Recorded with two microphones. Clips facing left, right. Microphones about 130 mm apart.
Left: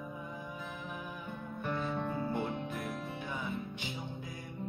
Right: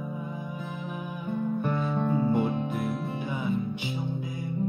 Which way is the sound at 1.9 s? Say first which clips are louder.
Right 9 dB; 25° right (ahead or behind).